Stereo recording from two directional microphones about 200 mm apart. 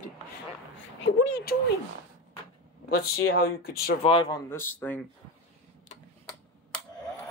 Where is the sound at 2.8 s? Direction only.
50° left (ahead or behind).